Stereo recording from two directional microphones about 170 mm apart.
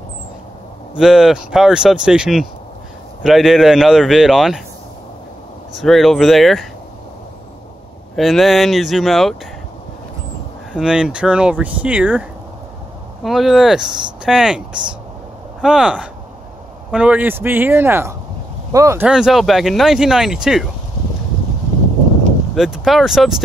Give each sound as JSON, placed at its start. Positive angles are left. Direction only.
{"t": 0.9, "sound": "speech", "side_deg": -5}
{"t": 5.8, "sound": "speech", "side_deg": 0}
{"t": 8.2, "sound": "speech", "side_deg": 0}
{"t": 10.7, "sound": "speech", "side_deg": -5}
{"t": 15.6, "sound": "speech", "side_deg": -5}
{"t": 19.0, "sound": "speech", "side_deg": -5}
{"t": 22.6, "sound": "speech", "side_deg": 0}